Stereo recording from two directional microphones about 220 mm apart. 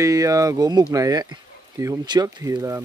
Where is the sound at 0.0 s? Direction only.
15° right (ahead or behind).